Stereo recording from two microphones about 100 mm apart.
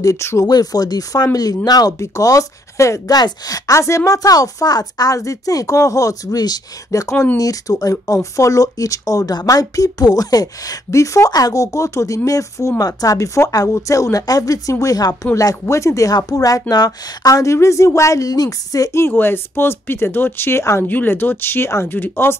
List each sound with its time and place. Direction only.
0.0 s speech: 30° left (ahead or behind)
0.5 s speech: 40° left (ahead or behind)
19.0 s speech: 20° left (ahead or behind)